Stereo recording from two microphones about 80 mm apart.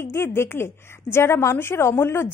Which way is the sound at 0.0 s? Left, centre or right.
Left.